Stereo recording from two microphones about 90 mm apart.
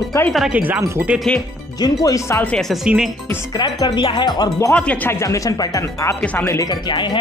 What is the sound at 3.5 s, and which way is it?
Speech, 50° left (ahead or behind).